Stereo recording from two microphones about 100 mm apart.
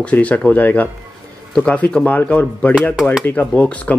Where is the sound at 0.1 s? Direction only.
15° left (ahead or behind).